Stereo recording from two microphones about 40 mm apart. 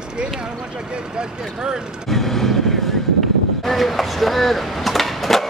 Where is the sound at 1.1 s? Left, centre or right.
Centre.